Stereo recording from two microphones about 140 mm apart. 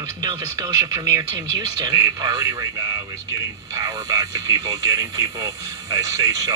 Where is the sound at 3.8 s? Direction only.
25° right (ahead or behind).